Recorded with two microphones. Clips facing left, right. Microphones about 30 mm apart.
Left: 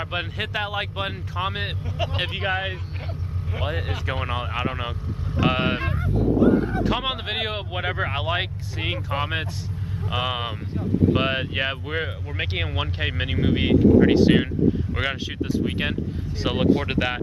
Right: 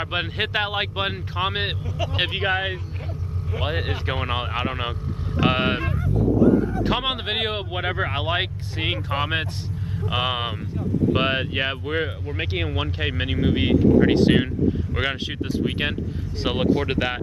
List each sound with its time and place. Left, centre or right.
0.0 s speech: centre
3.6 s speech: right
5.9 s vehicle: left
6.8 s speech: centre